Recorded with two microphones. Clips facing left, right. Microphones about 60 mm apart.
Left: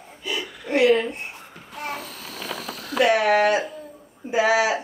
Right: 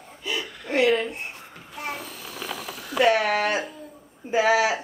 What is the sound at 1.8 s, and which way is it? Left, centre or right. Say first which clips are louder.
A child's voice: left 1 dB; centre.